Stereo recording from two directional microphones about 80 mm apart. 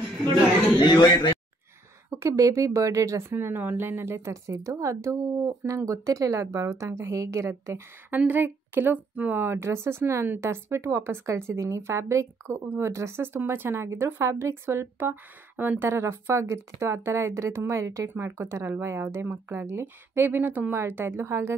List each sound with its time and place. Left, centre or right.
0.7 s speech: left
2.0 s speech: right
8.1 s speech: right